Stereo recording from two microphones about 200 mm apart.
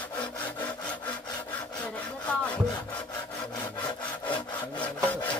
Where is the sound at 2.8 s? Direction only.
5° left (ahead or behind).